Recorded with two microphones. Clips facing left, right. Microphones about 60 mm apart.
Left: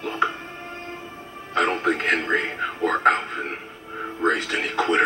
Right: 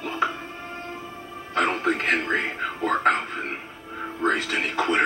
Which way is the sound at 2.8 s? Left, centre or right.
Left.